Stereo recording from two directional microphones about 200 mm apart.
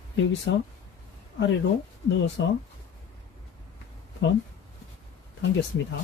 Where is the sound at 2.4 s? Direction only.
65° left (ahead or behind).